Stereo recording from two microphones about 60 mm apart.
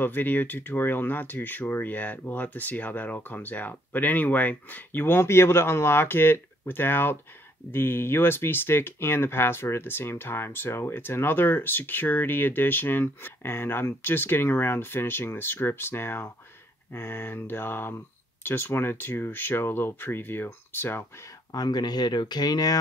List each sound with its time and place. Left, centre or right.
0.0 s speech: left
21.5 s speech: left